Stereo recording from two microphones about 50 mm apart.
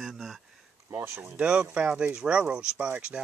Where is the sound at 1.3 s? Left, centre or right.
Right.